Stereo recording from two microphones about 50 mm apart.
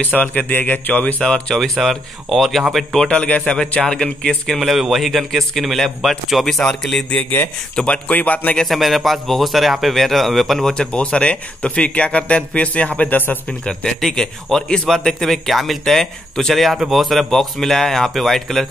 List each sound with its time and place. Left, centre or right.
0.0 s speech: left
1.5 s a man's voice: centre
3.1 s speech: left
4.6 s a man's voice: centre
7.2 s speech: left
7.7 s speech: left
8.6 s a man's voice: centre
10.7 s speech: centre; by 13.4 s left
13.8 s a man's voice: centre